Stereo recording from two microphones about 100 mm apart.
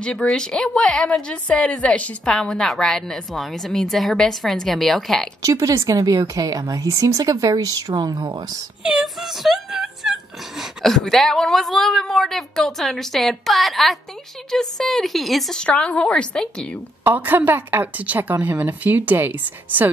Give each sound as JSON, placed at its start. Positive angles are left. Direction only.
{"t": 0.0, "sound": "a woman's voice", "side_deg": 10}
{"t": 5.4, "sound": "a woman's voice", "side_deg": -35}
{"t": 7.9, "sound": "speech", "side_deg": -50}
{"t": 8.8, "sound": "a woman's voice", "side_deg": -5}
{"t": 17.0, "sound": "speech", "side_deg": -20}